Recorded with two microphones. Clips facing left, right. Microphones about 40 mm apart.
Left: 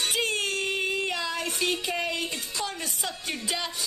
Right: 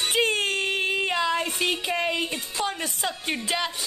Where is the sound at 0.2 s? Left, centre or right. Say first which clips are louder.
Right 4 dB; right.